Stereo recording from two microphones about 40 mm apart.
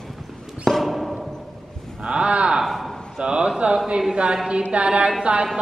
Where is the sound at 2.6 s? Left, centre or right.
Centre.